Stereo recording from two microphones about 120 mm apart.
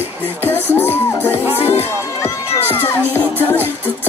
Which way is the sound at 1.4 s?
15° right (ahead or behind).